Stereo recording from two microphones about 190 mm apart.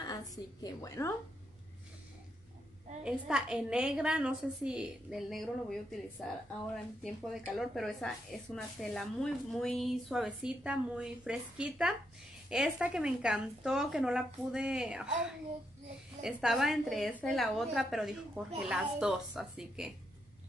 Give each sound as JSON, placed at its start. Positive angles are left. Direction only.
{"t": 0.0, "sound": "a woman's voice", "side_deg": 20}
{"t": 3.0, "sound": "a woman's voice", "side_deg": -5}
{"t": 16.2, "sound": "a woman's voice", "side_deg": -5}